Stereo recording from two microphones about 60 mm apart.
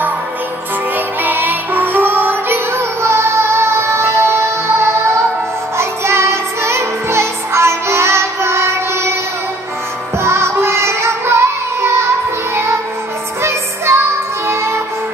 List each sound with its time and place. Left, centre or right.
0.9 s music: right
3.0 s music: right
10.1 s music: right